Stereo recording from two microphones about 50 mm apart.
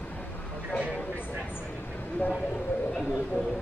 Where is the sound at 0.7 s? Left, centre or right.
Left.